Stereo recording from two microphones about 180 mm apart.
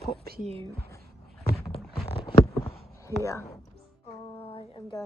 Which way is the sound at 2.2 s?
20° left (ahead or behind).